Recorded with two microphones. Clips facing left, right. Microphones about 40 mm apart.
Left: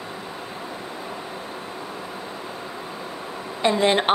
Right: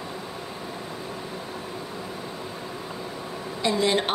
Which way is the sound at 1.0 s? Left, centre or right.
Centre.